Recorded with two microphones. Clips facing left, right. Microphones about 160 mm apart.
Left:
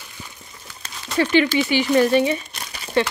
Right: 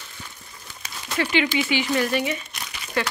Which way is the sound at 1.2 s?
30° left (ahead or behind).